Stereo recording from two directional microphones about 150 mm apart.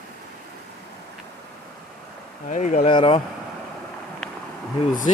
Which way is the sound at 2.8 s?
40° left (ahead or behind).